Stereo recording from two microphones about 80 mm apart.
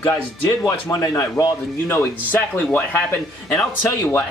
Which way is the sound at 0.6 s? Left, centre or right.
Left.